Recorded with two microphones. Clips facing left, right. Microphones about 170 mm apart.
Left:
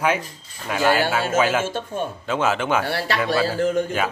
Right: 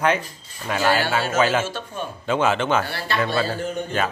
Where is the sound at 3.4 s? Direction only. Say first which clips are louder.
Left 6 dB; 90° left.